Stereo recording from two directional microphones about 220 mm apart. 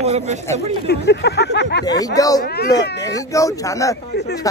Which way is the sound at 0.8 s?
50° left (ahead or behind).